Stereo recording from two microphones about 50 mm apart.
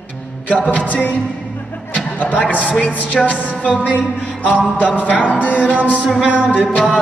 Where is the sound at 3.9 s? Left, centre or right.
Left.